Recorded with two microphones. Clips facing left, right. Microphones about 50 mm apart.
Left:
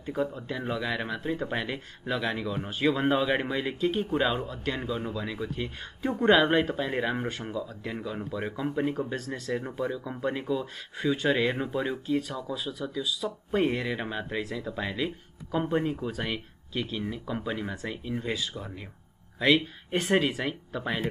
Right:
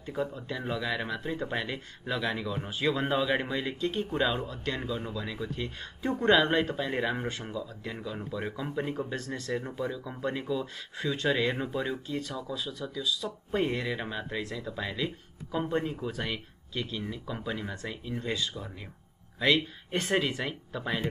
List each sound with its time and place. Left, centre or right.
0.0 s speech: centre
7.6 s speech: centre